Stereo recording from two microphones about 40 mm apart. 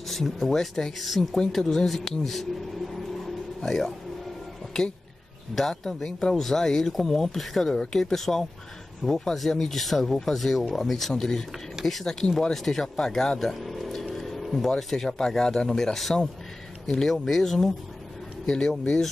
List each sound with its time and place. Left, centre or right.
0.1 s speech: centre
0.9 s speech: centre
1.3 s speech: centre
3.6 s speech: centre
5.5 s speech: centre
6.9 s speech: centre
7.7 s speech: centre
8.0 s speech: centre